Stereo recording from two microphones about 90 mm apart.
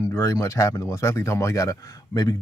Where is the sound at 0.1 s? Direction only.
35° left (ahead or behind).